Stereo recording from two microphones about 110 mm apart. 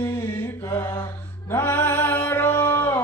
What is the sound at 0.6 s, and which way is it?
Mantra, 25° left (ahead or behind).